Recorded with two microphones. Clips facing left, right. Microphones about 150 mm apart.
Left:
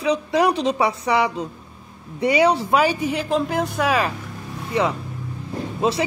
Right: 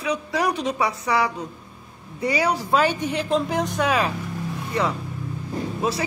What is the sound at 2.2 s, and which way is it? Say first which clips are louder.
Music: left 5 dB; 25° left (ahead or behind).